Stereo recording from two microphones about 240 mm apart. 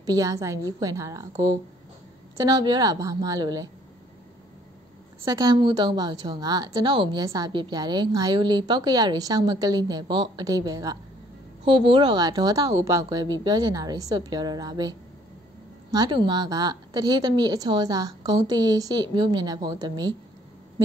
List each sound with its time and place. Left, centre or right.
0.0 s a woman's voice: centre
2.3 s a woman's voice: centre
5.2 s a woman's voice: centre